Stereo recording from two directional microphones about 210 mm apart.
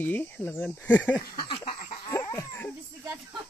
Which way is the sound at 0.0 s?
10° left (ahead or behind).